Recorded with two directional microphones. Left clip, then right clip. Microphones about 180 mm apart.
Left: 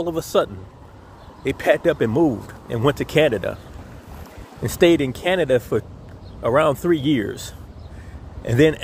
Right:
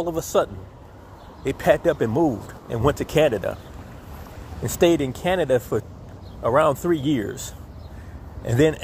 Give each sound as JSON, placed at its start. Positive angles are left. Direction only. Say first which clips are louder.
{"t": 0.0, "sound": "speech", "louder": "left 1 dB", "side_deg": 30}
{"t": 4.6, "sound": "speech", "louder": "left 3 dB", "side_deg": 30}